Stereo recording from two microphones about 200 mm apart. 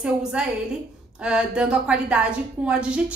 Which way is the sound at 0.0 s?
5° right (ahead or behind).